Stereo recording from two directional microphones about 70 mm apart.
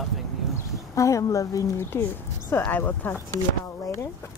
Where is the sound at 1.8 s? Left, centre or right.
Left.